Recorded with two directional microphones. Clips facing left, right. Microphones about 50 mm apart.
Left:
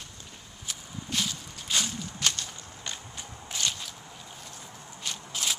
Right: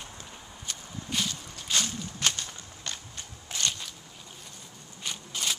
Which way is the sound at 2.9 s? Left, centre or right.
Centre.